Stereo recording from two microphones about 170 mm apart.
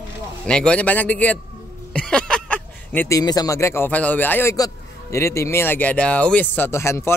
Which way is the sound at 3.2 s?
20° left (ahead or behind).